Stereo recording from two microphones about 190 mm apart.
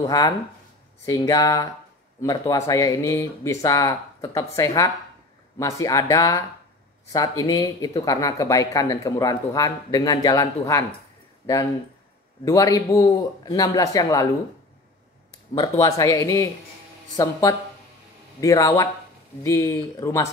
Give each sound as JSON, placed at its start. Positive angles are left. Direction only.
{"t": 0.0, "sound": "speech", "side_deg": 20}
{"t": 12.4, "sound": "speech", "side_deg": 20}
{"t": 15.5, "sound": "speech", "side_deg": 20}